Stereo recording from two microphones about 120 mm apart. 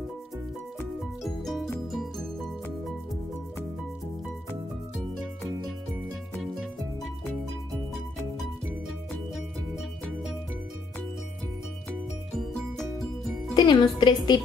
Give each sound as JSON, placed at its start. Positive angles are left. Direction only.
{"t": 1.2, "sound": "music", "side_deg": 0}
{"t": 9.3, "sound": "music", "side_deg": 0}
{"t": 12.4, "sound": "music", "side_deg": 5}
{"t": 13.6, "sound": "a woman's voice", "side_deg": 45}